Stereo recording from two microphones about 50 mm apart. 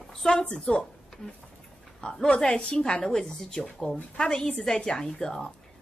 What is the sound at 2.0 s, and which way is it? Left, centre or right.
Speech, centre.